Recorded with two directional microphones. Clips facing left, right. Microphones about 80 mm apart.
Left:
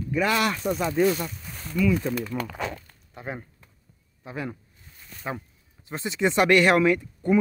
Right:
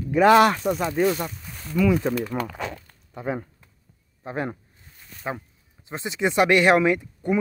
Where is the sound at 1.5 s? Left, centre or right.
Centre.